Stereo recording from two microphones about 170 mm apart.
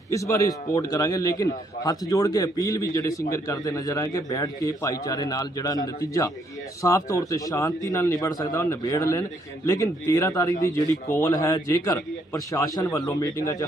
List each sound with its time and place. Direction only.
0.1 s a man's voice: 20° left (ahead or behind)